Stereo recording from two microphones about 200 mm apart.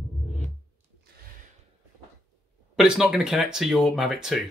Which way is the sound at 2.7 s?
5° right (ahead or behind).